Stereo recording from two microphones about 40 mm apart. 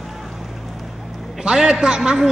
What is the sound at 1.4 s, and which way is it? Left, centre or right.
Speech, centre.